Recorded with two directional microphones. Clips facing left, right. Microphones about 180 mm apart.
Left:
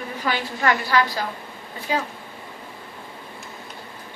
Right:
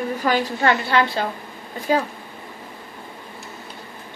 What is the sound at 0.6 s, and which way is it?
Speech, 25° right (ahead or behind).